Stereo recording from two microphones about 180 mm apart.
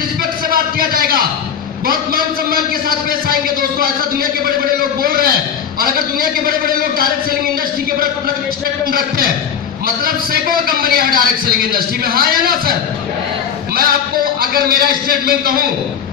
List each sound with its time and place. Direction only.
0.2 s music: 55° right (ahead or behind)
1.9 s a man's voice: 55° right (ahead or behind)
8.9 s a man's voice: 55° right (ahead or behind)
13.7 s a man's voice: 55° right (ahead or behind)